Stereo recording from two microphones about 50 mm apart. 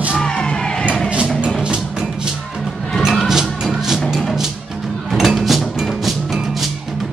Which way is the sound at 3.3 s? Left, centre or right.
Centre.